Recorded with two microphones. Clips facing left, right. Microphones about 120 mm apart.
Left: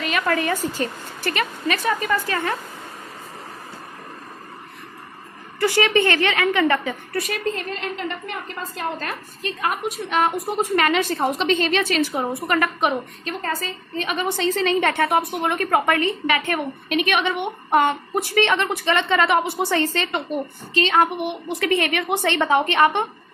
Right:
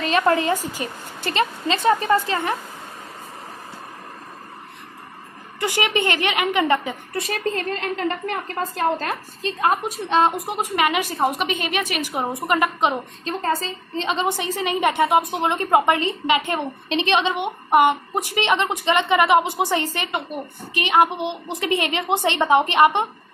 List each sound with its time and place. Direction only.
0.0 s a woman's voice: 30° right (ahead or behind)
0.6 s speech: 15° right (ahead or behind)
1.3 s a woman's voice: 25° right (ahead or behind)
5.6 s a woman's voice: 15° right (ahead or behind)
7.2 s a woman's voice: 45° right (ahead or behind)
8.7 s a woman's voice: 30° right (ahead or behind)